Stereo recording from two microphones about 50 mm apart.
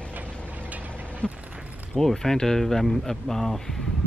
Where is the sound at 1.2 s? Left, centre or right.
Left.